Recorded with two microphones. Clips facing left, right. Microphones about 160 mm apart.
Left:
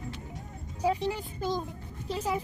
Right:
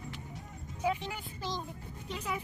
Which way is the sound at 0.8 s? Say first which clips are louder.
Left 5 dB; 35° left (ahead or behind).